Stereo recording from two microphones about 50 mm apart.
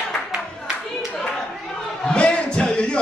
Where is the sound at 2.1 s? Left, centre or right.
Centre.